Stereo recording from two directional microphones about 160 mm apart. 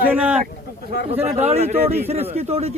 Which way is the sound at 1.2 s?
40° right (ahead or behind).